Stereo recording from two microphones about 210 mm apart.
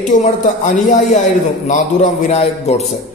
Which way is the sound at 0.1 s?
35° left (ahead or behind).